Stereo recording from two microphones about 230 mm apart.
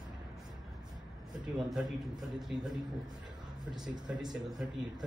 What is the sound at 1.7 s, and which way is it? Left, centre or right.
A man's voice, centre.